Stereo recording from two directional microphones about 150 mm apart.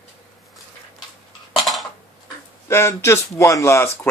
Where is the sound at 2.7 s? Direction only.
15° left (ahead or behind).